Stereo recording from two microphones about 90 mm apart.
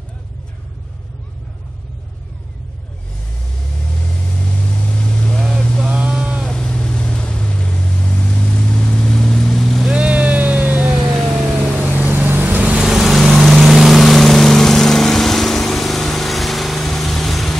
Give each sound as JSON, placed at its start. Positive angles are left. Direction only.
{"t": 4.3, "sound": "vehicle", "side_deg": 15}
{"t": 5.9, "sound": "a sound", "side_deg": -10}
{"t": 6.5, "sound": "vehicle", "side_deg": 10}
{"t": 9.9, "sound": "vehicle", "side_deg": -15}
{"t": 11.1, "sound": "vehicle", "side_deg": -5}
{"t": 11.8, "sound": "vehicle", "side_deg": -20}
{"t": 12.8, "sound": "vehicle", "side_deg": -5}